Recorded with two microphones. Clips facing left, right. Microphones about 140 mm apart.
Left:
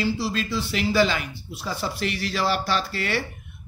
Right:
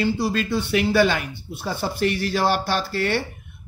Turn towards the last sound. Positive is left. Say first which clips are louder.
# right 3 dB
turn(degrees=-50)  # may be behind; listen again after turning